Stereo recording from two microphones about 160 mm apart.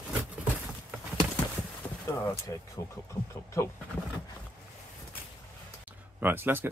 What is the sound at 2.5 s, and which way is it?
Speech, 20° left (ahead or behind).